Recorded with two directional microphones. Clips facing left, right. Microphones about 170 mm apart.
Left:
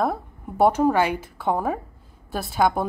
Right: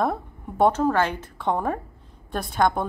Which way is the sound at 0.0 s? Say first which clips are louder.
Even; centre (ahead or behind).